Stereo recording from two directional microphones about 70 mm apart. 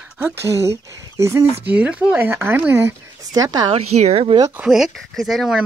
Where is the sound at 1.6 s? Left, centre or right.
Centre.